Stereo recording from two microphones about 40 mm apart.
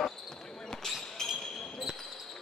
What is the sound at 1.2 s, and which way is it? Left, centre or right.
Basketball bounce, centre.